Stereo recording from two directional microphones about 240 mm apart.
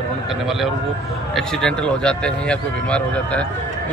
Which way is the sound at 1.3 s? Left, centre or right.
Centre.